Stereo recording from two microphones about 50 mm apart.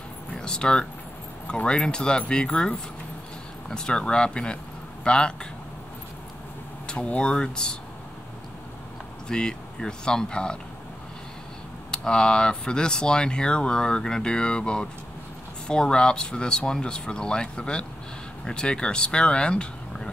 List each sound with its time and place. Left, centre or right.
0.3 s a sound: centre
1.5 s speech: centre
3.7 s speech: centre
7.1 s speech: centre
9.3 s speech: centre
11.9 s speech: centre